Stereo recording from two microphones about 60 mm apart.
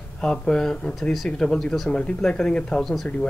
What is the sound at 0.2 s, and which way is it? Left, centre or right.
Speech, centre.